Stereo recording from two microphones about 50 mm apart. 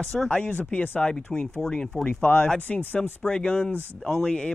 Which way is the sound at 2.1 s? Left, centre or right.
Left.